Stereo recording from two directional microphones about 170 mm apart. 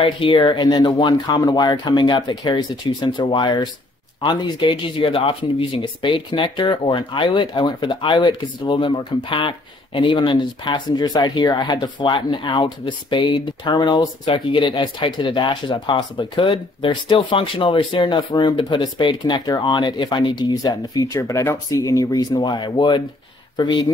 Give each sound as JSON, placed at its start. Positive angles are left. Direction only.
{"t": 0.0, "sound": "speech", "side_deg": 30}